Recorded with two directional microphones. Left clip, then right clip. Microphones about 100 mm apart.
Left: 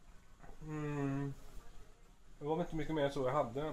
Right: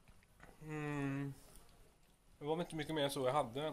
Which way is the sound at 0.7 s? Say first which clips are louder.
Left 2 dB; 25° right (ahead or behind).